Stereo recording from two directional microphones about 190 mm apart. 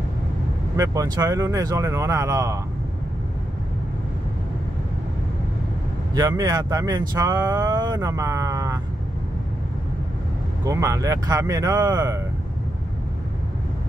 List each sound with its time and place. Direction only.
0.7 s speech: 20° right (ahead or behind)
6.1 s speech: 20° right (ahead or behind)
10.6 s speech: 15° right (ahead or behind)